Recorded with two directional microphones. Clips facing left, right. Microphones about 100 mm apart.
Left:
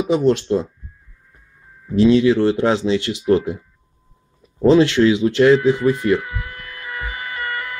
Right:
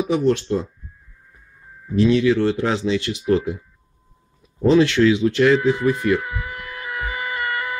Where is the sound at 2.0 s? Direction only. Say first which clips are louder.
Left 3 dB; 25° left (ahead or behind).